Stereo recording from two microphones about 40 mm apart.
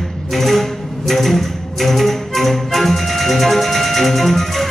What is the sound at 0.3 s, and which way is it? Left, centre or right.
Music, centre.